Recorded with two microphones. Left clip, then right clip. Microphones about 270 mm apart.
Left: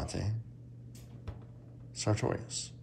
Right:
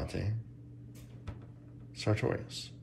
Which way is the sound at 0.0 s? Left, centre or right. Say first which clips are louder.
Even; centre.